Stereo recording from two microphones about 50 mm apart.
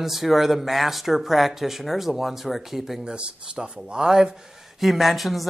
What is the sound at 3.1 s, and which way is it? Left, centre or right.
Speech, centre.